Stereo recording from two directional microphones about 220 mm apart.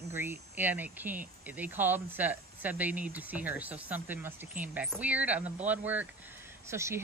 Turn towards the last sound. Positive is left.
turn(degrees=-10)  # may be behind; listen again after turning